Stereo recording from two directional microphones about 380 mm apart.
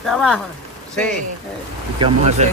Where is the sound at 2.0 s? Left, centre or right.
Centre.